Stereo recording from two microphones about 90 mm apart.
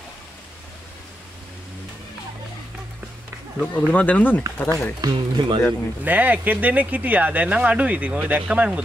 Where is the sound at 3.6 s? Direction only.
20° left (ahead or behind).